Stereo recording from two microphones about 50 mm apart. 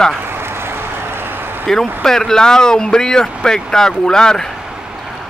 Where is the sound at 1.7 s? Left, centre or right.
Centre.